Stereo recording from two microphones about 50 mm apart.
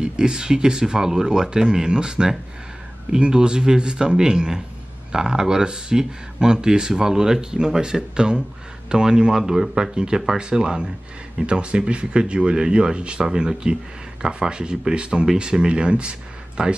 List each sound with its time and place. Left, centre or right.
0.0 s speech: centre